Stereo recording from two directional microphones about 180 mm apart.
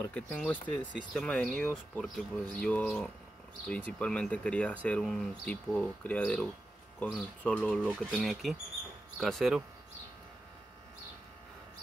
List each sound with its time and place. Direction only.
0.0 s speech: 5° left (ahead or behind)